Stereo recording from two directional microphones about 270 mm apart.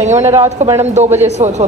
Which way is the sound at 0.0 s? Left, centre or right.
Right.